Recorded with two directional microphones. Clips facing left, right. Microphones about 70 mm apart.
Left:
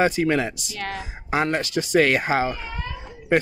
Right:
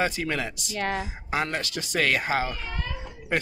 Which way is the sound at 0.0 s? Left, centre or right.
Left.